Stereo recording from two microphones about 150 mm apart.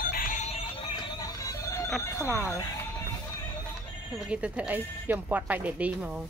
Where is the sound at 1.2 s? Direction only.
20° left (ahead or behind).